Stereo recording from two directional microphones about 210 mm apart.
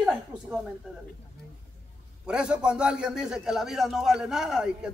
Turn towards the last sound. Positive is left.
turn(degrees=-5)  # may be behind; listen again after turning